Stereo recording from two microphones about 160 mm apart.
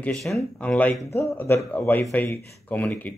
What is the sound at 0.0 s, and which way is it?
Speech, centre (ahead or behind).